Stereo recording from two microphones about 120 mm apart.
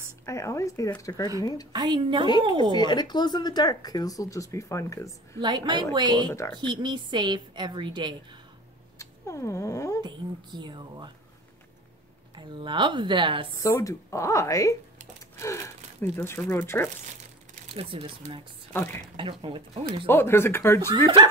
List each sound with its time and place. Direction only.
0.2 s speech: 25° left (ahead or behind)
1.7 s a woman's voice: 35° right (ahead or behind)
2.7 s speech: 35° left (ahead or behind)
5.4 s a woman's voice: 40° right (ahead or behind)
8.9 s cat: 25° left (ahead or behind)
10.0 s a woman's voice: 40° right (ahead or behind)
12.4 s speech: 40° right (ahead or behind)
13.6 s speech: 25° left (ahead or behind)
17.7 s speech: 50° right (ahead or behind)
18.7 s a woman's voice: 20° left (ahead or behind)
19.4 s speech: 45° right (ahead or behind)
20.1 s speech: 20° left (ahead or behind)